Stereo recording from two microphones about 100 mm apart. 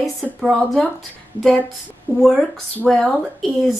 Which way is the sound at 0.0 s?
Centre (ahead or behind).